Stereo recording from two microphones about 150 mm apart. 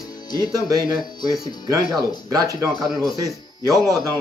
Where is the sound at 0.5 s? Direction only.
25° right (ahead or behind).